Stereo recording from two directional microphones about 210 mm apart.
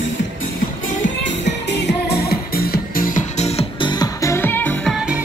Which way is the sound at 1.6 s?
50° left (ahead or behind).